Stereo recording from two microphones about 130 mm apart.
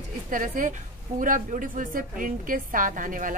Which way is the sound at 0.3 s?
90° right.